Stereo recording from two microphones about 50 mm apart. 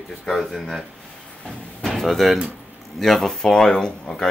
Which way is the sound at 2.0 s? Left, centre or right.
Centre.